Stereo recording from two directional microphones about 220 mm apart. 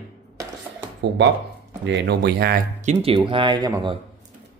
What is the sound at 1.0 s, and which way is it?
Speech, 50° right (ahead or behind).